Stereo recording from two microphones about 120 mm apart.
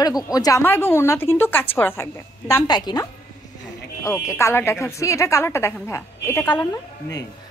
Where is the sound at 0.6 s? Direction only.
15° left (ahead or behind).